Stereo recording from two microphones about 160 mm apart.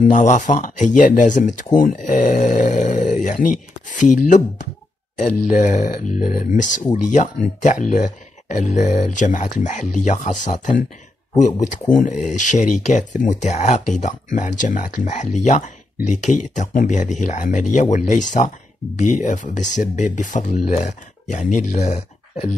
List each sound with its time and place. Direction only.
0.0 s speech: 50° left (ahead or behind)